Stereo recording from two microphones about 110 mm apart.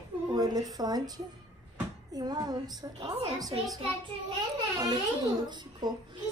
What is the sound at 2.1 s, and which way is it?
A woman's voice, 35° right (ahead or behind).